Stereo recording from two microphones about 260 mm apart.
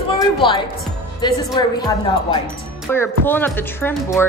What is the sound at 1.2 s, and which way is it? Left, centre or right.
A woman's voice, centre.